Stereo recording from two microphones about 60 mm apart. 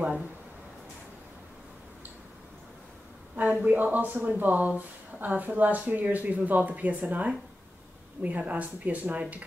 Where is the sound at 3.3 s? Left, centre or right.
Right.